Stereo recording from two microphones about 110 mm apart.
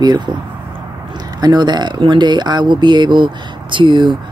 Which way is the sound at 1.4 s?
40° right (ahead or behind).